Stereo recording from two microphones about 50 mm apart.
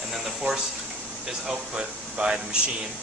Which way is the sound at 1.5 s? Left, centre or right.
Centre.